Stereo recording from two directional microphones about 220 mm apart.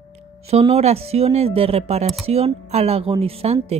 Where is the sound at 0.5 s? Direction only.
30° right (ahead or behind).